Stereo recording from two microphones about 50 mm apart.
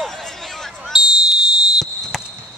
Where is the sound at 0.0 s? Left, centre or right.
Centre.